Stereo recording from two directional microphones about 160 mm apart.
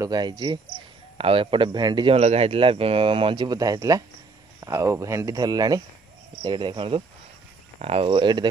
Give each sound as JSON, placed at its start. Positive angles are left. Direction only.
{"t": 0.0, "sound": "speech", "side_deg": -25}
{"t": 2.1, "sound": "speech", "side_deg": -40}